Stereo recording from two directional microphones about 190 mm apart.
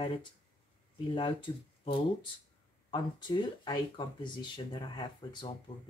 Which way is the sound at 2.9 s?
25° left (ahead or behind).